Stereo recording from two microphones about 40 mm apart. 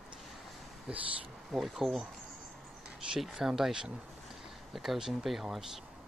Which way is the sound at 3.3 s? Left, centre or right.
Centre.